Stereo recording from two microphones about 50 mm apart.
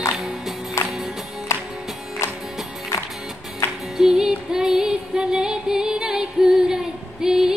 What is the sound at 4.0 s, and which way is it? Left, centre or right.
Music, centre.